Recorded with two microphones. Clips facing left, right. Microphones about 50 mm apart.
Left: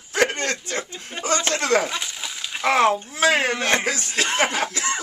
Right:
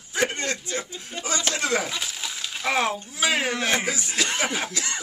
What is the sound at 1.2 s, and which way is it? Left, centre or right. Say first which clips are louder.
Speech: left 5 dB; left.